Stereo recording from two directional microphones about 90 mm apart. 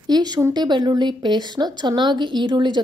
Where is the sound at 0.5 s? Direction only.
55° right (ahead or behind).